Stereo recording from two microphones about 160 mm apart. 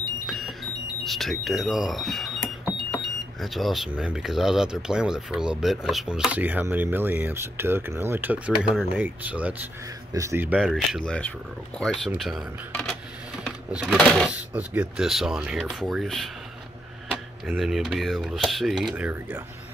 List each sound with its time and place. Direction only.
0.3 s alarm clock: centre (ahead or behind)
1.0 s speech: centre (ahead or behind)
10.6 s speech: centre (ahead or behind)
17.5 s speech: 5° right (ahead or behind)